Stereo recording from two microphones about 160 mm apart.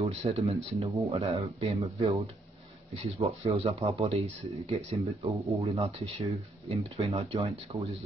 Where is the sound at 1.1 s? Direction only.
40° right (ahead or behind).